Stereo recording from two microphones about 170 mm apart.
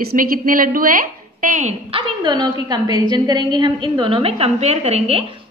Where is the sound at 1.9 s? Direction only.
25° right (ahead or behind).